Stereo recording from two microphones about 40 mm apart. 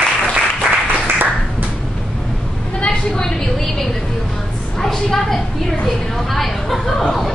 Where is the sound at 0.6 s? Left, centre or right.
Right.